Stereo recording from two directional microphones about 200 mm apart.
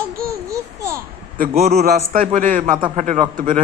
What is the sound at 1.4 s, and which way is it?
A man's voice, 35° right (ahead or behind).